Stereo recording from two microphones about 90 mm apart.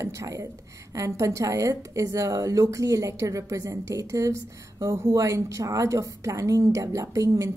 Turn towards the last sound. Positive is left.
turn(degrees=-35)  # may be behind; listen again after turning